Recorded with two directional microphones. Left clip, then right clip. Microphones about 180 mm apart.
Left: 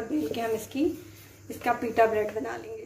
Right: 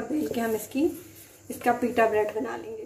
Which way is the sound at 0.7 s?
45° right (ahead or behind).